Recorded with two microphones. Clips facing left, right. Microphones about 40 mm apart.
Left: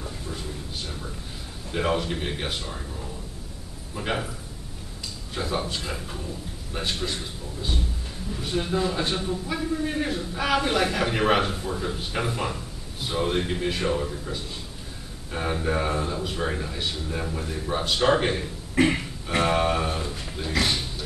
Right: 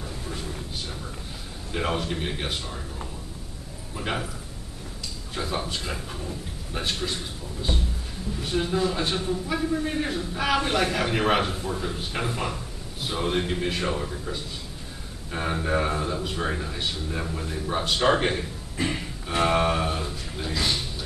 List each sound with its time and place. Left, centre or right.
1.7 s a man's voice: centre
3.9 s a man's voice: centre
5.3 s a man's voice: centre
8.4 s a man's voice: centre
18.8 s music: left
19.4 s a man's voice: centre